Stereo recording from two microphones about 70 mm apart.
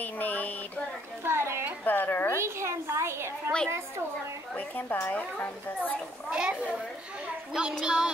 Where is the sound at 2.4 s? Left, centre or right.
Right.